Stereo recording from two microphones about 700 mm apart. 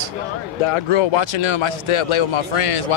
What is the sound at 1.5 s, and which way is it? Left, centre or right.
Speech, left.